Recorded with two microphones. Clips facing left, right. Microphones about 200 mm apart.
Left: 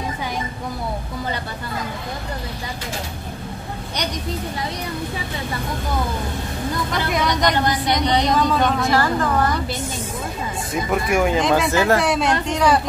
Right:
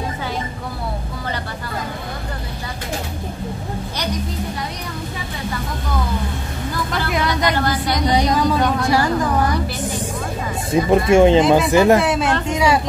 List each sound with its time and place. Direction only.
7.1 s vehicle: centre (ahead or behind)
7.5 s speech: 20° left (ahead or behind)
8.1 s speech: 5° right (ahead or behind)
8.8 s a woman's voice: 15° right (ahead or behind)
10.7 s speech: 25° right (ahead or behind)
12.0 s speech: centre (ahead or behind)